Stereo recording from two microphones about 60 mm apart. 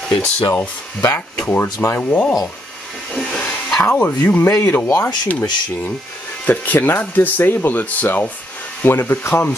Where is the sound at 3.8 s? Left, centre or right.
Left.